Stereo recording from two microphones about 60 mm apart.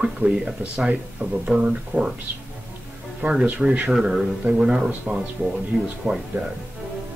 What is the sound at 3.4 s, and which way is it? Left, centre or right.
Speech, right.